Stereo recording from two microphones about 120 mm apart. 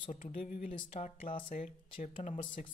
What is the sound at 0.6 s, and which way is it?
Speech, 85° left.